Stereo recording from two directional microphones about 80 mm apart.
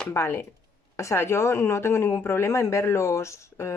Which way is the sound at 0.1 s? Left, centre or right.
Left.